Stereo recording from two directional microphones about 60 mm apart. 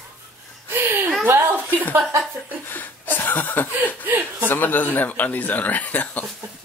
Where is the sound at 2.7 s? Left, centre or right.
Left.